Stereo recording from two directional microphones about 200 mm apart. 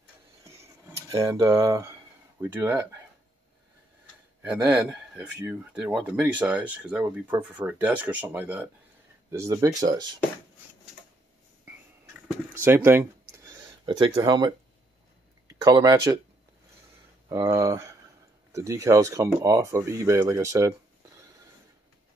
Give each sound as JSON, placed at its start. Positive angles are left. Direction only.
{"t": 1.1, "sound": "speech", "side_deg": -15}
{"t": 4.4, "sound": "speech", "side_deg": -10}
{"t": 12.5, "sound": "a sound", "side_deg": -10}
{"t": 15.4, "sound": "speech", "side_deg": -20}
{"t": 17.3, "sound": "speech", "side_deg": -15}